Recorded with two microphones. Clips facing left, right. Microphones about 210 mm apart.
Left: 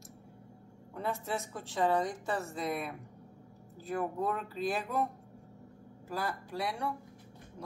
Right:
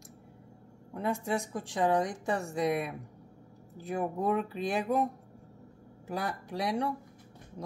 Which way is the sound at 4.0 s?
15° right (ahead or behind).